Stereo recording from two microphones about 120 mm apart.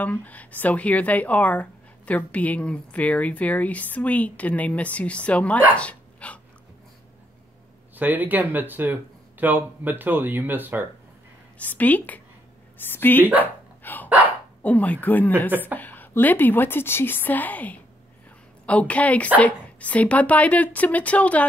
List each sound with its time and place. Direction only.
0.0 s speech: 15° left (ahead or behind)
5.8 s dog: 10° left (ahead or behind)
7.9 s speech: 15° right (ahead or behind)
11.5 s speech: 10° left (ahead or behind)
13.2 s speech: 15° right (ahead or behind)
13.8 s dog: 15° left (ahead or behind)
14.6 s speech: 15° left (ahead or behind)